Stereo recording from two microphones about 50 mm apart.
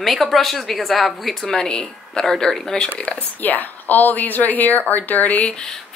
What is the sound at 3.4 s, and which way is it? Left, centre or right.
A woman's voice, left.